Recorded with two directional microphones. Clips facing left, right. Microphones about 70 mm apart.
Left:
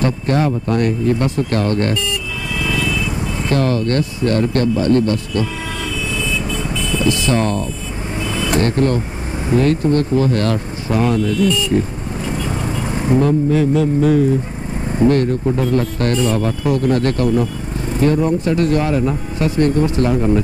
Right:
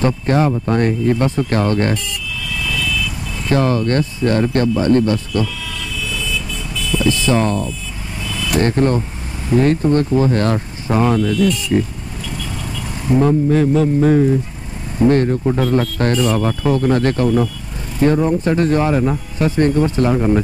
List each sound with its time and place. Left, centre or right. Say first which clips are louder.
0.0 s speech: right 1 dB; right
2.0 s vehicle: left 4 dB; left
3.5 s speech: right 2 dB; right
6.1 s vehicle: left 4 dB; left
7.2 s speech: right 3 dB; right
8.3 s vehicle: left 3 dB; left
8.6 s speech: right 1 dB; right
11.3 s speech: even; left
12.3 s vehicle: left 6 dB; left
13.5 s speech: right 1 dB; right